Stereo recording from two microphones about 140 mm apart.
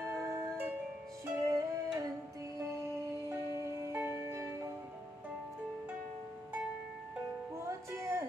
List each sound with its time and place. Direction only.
0.0 s music: 15° right (ahead or behind)
3.9 s music: 15° right (ahead or behind)
7.6 s music: 20° right (ahead or behind)